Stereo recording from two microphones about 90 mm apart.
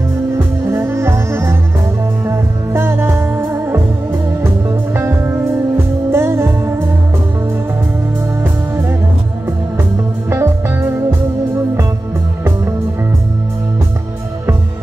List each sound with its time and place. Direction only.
0.7 s music: 30° right (ahead or behind)
4.9 s music: 25° right (ahead or behind)
10.3 s music: 30° right (ahead or behind)